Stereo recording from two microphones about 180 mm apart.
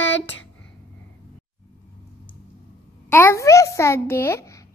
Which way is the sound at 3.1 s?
15° left (ahead or behind).